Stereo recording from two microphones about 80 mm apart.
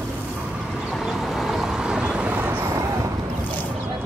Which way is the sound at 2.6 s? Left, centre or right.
Right.